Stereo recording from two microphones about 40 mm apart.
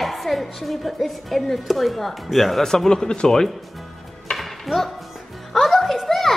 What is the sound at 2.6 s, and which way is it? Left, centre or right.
Speech, centre.